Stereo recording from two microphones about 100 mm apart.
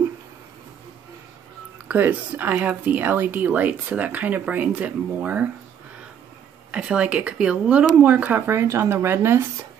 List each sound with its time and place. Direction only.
1.9 s speech: 20° right (ahead or behind)
6.7 s speech: 10° right (ahead or behind)